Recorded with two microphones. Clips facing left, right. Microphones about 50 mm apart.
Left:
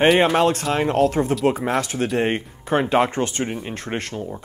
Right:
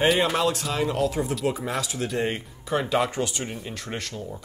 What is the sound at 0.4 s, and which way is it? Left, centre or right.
Speech, left.